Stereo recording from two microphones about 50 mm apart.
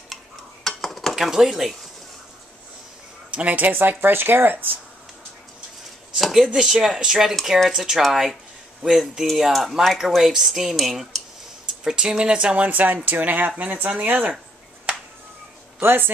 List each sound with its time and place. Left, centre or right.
0.7 s dishes: centre
1.1 s speech: centre
3.3 s speech: right
6.1 s speech: centre
12.6 s speech: right
15.8 s speech: right